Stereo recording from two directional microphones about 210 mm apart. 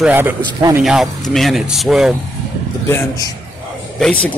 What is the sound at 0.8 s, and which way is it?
Speech, centre (ahead or behind).